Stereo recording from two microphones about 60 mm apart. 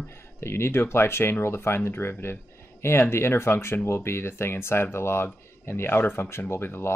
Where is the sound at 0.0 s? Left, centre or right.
Left.